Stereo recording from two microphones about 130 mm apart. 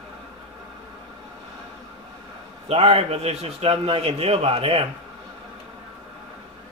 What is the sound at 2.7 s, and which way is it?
A man's voice, 50° right (ahead or behind).